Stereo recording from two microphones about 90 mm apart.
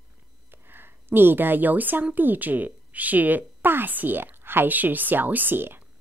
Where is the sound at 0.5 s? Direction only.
25° right (ahead or behind).